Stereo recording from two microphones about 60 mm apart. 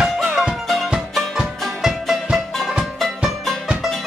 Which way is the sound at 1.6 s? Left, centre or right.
Centre.